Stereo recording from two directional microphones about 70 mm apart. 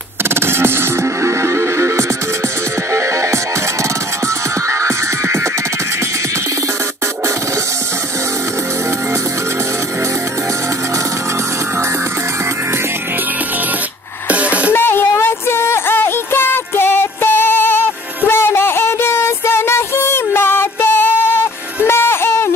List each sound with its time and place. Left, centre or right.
0.2 s music: right
4.6 s music: right
14.3 s a sound: centre
14.7 s music: left
18.3 s a sound: left
21.8 s music: left